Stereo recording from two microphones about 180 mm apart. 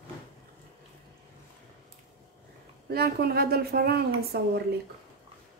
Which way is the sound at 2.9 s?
60° right (ahead or behind).